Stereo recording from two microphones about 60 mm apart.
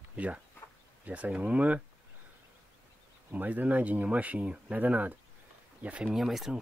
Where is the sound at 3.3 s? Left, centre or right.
Right.